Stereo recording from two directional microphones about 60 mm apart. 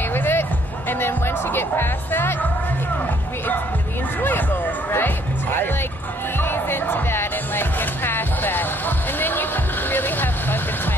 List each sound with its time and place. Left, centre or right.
0.1 s music: left
4.2 s music: left